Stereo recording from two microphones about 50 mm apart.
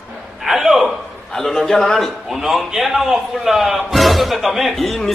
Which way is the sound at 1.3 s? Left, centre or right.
Centre.